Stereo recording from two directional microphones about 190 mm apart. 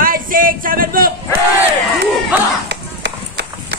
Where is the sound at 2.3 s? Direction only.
10° right (ahead or behind).